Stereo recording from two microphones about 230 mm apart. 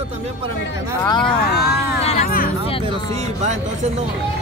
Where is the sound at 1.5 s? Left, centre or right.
Left.